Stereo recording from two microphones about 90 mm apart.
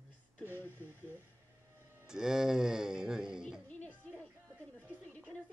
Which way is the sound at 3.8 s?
20° left (ahead or behind).